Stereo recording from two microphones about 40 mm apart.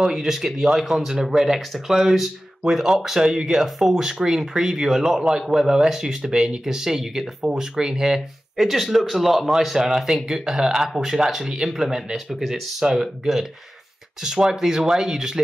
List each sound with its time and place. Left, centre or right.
0.0 s speech: centre
10.7 s speech: centre
11.0 s speech: centre